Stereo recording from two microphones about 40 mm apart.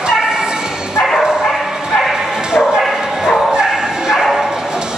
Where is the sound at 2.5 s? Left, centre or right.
Centre.